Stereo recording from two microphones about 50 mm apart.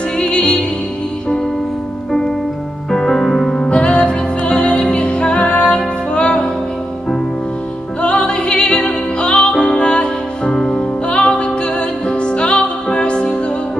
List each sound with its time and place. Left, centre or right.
0.2 s music: left
2.9 s music: centre
3.6 s music: left
8.0 s music: left